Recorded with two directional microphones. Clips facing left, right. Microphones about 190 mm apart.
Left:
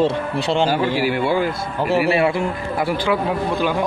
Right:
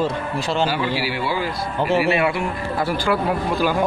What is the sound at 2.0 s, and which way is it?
Speech, 35° left (ahead or behind).